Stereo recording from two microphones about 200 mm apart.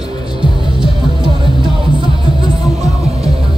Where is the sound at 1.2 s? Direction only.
25° right (ahead or behind).